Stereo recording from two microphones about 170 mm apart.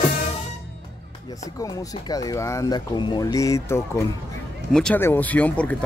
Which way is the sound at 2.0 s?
20° left (ahead or behind).